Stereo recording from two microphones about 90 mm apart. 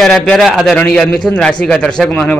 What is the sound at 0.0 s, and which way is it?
A man's voice, 5° left (ahead or behind).